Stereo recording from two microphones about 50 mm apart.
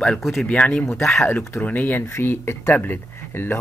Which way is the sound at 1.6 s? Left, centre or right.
Left.